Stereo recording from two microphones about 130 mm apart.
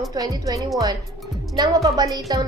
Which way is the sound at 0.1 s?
30° right (ahead or behind).